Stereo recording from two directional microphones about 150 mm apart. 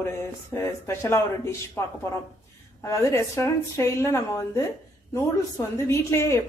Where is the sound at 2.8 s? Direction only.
20° left (ahead or behind).